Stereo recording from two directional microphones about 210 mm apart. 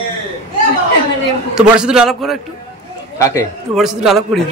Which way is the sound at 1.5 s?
5° right (ahead or behind).